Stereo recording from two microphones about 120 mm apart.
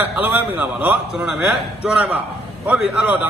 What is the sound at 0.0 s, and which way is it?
A man's voice, 15° right (ahead or behind).